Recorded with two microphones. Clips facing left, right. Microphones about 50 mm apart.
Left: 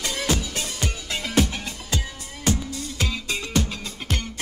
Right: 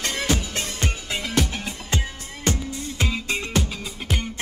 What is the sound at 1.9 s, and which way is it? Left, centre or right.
Music, right.